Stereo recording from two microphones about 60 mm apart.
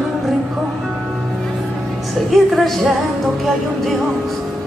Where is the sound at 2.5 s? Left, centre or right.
Centre.